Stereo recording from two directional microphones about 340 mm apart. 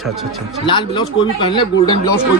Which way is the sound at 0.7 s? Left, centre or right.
Centre.